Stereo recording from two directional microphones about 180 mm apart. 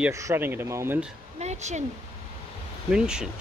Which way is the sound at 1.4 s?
40° right (ahead or behind).